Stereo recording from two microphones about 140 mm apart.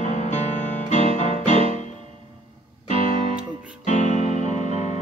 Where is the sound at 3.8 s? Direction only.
60° left (ahead or behind).